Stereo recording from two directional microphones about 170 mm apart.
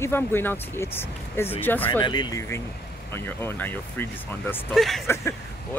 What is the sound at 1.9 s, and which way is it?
Speech, 25° left (ahead or behind).